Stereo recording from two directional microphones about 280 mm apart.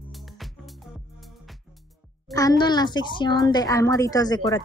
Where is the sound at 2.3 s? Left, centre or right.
Centre.